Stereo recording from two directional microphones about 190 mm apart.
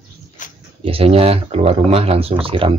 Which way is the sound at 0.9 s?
30° right (ahead or behind).